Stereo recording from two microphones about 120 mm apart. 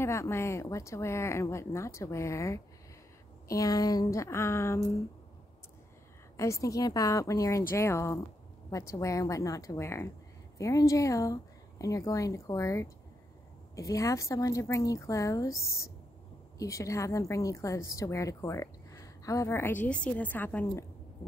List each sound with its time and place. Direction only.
0.0 s a woman's voice: 25° left (ahead or behind)
6.3 s a woman's voice: 25° left (ahead or behind)